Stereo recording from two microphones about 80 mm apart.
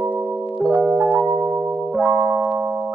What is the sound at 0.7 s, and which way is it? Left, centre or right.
Music, centre.